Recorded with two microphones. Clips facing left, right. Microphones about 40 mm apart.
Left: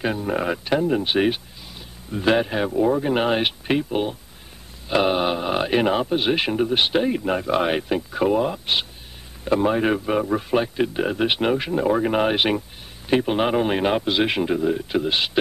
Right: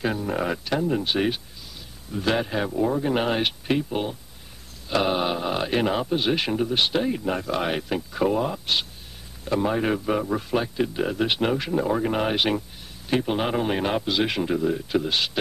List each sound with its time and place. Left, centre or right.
0.0 s a man's voice: centre
14.5 s a man's voice: centre